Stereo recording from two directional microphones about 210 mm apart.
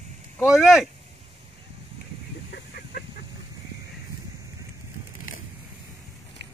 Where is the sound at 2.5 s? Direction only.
45° left (ahead or behind).